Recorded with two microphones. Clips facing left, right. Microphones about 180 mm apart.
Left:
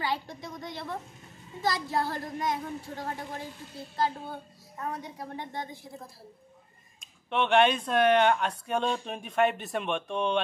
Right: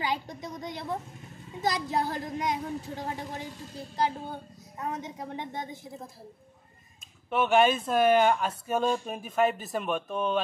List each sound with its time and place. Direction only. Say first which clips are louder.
0.0 s a woman's voice: right 1 dB; 20° right (ahead or behind)
7.2 s speech: right 1 dB; 5° right (ahead or behind)